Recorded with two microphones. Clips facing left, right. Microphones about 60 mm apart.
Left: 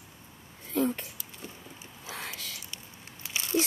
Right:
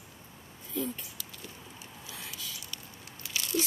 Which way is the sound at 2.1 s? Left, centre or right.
Left.